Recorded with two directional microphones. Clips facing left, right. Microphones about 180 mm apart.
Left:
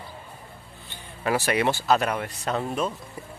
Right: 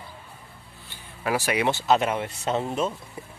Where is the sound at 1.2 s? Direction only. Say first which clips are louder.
Left 1 dB; 10° right (ahead or behind); by 2.9 s 25° right (ahead or behind).